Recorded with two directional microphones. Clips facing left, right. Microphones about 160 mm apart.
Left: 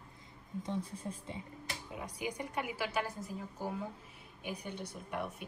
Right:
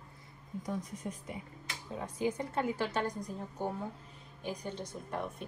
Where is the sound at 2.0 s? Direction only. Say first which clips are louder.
Right 6 dB; 15° left (ahead or behind).